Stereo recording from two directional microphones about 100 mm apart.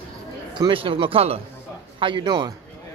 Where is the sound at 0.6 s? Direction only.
60° right (ahead or behind); by 1.4 s 80° right.